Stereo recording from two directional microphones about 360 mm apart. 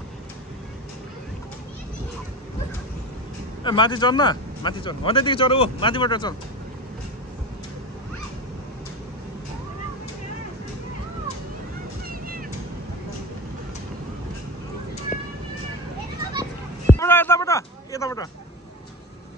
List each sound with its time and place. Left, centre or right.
3.6 s speech: centre
12.1 s vehicle: right
16.2 s children playing: centre
17.0 s a sound: centre